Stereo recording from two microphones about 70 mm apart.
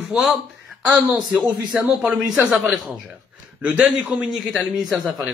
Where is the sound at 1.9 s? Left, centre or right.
Centre.